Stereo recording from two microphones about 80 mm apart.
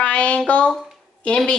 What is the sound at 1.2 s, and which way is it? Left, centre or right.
Speech, centre.